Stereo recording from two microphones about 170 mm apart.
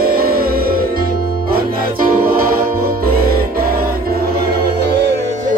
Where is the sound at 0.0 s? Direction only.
60° right (ahead or behind); by 5.1 s 75° right (ahead or behind).